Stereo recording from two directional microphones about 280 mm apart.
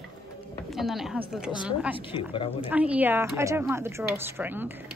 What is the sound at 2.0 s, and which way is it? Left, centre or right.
Speech, centre.